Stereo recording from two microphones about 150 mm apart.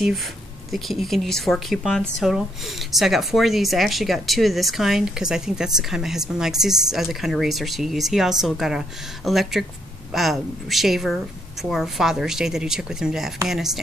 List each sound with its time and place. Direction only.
0.7 s speech: centre (ahead or behind)